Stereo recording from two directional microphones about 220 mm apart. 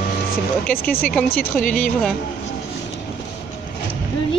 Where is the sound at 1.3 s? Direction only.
40° left (ahead or behind).